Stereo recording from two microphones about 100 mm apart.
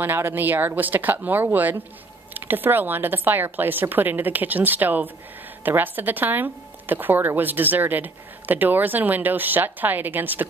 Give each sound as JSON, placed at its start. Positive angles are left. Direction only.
{"t": 0.0, "sound": "speech", "side_deg": -20}